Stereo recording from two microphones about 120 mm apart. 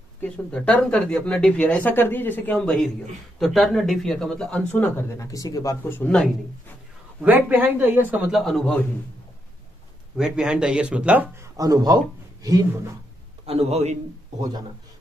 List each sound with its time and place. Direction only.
0.2 s speech: 10° left (ahead or behind)
5.1 s speech: 30° left (ahead or behind)
7.2 s speech: 15° right (ahead or behind)
8.3 s speech: centre (ahead or behind)
10.1 s speech: 5° right (ahead or behind)
11.3 s speech: 25° right (ahead or behind)
13.5 s a man's voice: 60° right (ahead or behind)